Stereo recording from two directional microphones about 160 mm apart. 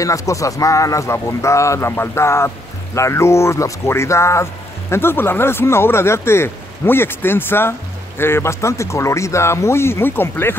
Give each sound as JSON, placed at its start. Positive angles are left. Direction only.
{"t": 0.0, "sound": "speech", "side_deg": 20}